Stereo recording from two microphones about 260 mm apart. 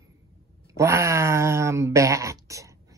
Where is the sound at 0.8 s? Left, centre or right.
Centre.